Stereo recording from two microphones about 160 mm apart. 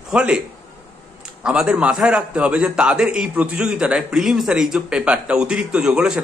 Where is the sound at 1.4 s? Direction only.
5° right (ahead or behind).